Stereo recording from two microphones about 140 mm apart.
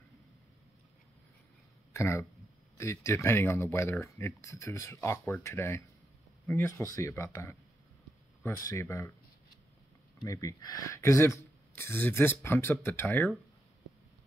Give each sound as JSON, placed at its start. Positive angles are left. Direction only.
{"t": 2.0, "sound": "speech", "side_deg": 20}
{"t": 10.2, "sound": "speech", "side_deg": 25}